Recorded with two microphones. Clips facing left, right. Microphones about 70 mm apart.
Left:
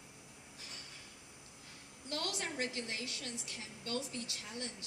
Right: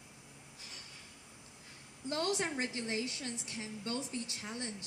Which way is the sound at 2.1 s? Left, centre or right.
Right.